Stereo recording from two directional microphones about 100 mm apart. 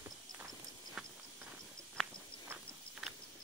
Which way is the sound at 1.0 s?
5° right (ahead or behind).